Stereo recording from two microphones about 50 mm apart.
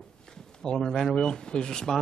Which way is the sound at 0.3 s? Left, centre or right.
Centre.